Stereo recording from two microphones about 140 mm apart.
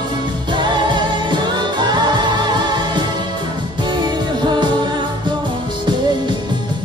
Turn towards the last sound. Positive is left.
turn(degrees=-30)  # may be behind; listen again after turning